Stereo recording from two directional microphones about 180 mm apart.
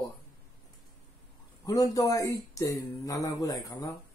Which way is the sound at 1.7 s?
20° left (ahead or behind).